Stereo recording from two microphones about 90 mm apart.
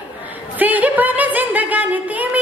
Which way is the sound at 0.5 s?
20° right (ahead or behind).